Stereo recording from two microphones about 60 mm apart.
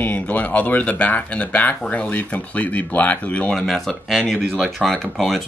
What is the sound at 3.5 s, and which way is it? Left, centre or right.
Speech, centre.